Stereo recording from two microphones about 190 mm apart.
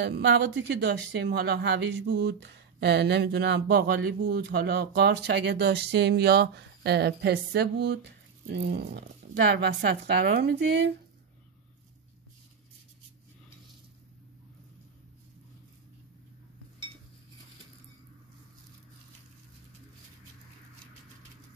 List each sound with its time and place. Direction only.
0.0 s speech: 60° right (ahead or behind)